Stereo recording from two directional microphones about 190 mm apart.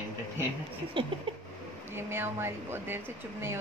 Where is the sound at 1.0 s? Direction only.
25° right (ahead or behind).